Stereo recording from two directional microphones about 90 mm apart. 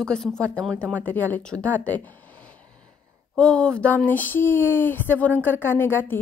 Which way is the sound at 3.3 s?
10° left (ahead or behind).